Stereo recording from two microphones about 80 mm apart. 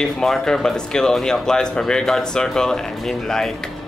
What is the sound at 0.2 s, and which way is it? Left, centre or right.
Speech, centre.